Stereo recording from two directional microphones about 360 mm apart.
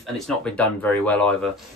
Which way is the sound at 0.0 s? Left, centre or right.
Centre.